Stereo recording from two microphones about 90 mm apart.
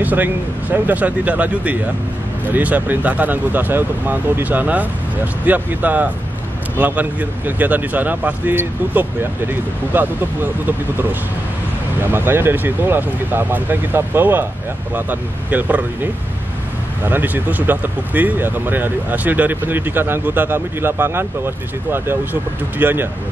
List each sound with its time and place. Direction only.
0.0 s speech: 20° right (ahead or behind)
12.0 s speech: 25° right (ahead or behind)